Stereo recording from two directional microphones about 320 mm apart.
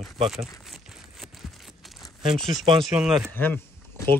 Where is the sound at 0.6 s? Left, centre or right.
Centre.